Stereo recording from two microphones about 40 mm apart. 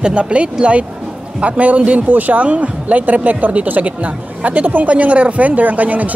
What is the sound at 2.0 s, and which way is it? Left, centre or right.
Speech, right.